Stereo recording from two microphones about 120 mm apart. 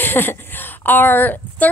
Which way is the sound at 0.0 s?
15° left (ahead or behind).